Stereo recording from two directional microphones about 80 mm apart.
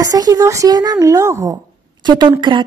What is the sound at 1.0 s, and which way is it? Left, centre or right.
Speech, right.